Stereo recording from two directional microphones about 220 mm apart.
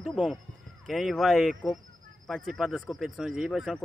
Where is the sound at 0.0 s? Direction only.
Centre (ahead or behind).